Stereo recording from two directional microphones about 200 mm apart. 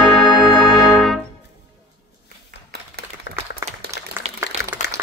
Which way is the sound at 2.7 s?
55° right (ahead or behind).